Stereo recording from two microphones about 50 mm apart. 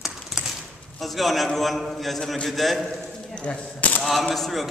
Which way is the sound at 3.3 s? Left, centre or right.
Left.